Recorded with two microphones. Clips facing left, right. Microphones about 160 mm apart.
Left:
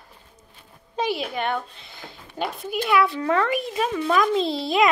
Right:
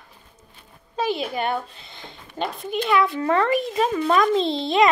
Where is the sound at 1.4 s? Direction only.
40° right (ahead or behind).